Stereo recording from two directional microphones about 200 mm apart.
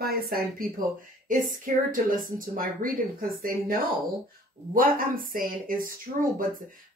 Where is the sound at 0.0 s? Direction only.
50° right (ahead or behind).